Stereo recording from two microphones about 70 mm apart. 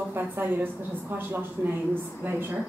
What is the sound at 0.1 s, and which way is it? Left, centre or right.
A woman's voice, right.